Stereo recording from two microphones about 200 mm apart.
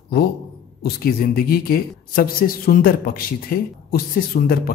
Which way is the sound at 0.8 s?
50° left (ahead or behind).